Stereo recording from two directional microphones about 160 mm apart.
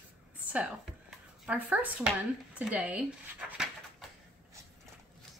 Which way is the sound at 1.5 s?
5° right (ahead or behind).